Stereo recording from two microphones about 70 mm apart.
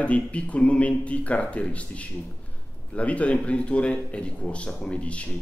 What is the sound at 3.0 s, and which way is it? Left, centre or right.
A man's voice, centre.